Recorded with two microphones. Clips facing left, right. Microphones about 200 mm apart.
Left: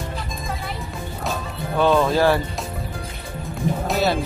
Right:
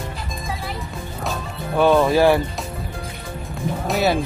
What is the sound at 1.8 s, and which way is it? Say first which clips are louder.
Speech: right 2 dB; 15° right (ahead or behind).